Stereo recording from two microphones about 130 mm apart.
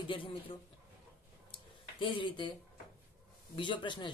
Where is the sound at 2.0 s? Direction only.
40° left (ahead or behind).